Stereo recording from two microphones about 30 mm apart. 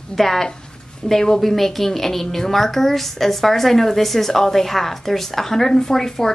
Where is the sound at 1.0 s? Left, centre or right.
Left.